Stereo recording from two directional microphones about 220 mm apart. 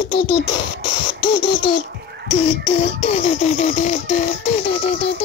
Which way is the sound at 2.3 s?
25° left (ahead or behind).